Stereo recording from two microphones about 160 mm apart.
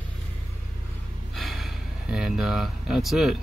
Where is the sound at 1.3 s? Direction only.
Centre (ahead or behind).